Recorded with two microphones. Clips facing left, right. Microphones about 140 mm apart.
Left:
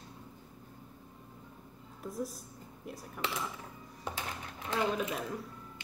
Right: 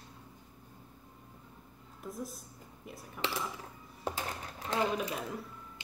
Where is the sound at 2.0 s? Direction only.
Centre (ahead or behind).